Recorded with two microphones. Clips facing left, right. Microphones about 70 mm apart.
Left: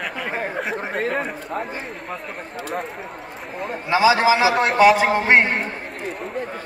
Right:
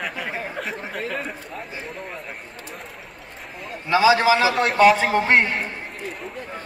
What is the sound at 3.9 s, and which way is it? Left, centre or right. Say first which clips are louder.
A man's voice: even; left.